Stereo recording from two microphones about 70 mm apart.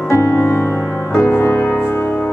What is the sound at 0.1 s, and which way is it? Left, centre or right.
Music, left.